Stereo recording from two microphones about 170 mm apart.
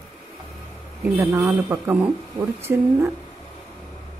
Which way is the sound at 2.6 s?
25° right (ahead or behind).